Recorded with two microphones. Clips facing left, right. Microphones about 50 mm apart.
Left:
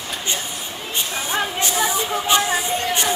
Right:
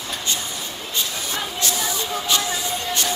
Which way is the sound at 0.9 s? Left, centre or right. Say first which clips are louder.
Left 4 dB; left.